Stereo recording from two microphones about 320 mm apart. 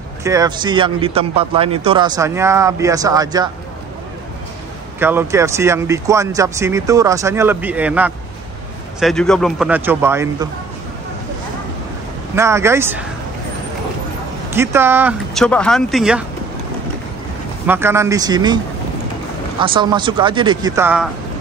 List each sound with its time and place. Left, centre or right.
0.2 s a man's voice: centre
5.0 s a man's voice: centre
12.4 s a man's voice: centre
14.5 s speech: centre
17.6 s a man's voice: centre
19.6 s a man's voice: centre